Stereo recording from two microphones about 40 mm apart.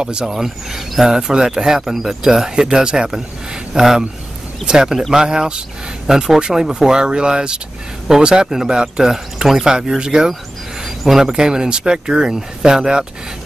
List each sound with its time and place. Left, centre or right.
0.0 s speech: right
0.3 s speech: centre
3.7 s speech: centre
10.8 s a sound: centre
11.3 s speech: centre